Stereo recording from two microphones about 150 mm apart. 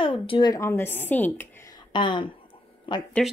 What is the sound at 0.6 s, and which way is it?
Speech, 15° left (ahead or behind).